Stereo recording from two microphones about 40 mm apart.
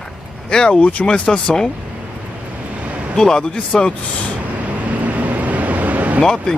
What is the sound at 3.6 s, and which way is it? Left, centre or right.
Speech, left.